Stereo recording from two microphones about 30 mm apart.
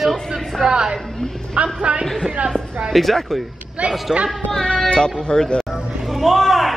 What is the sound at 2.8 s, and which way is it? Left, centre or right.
Speech, centre.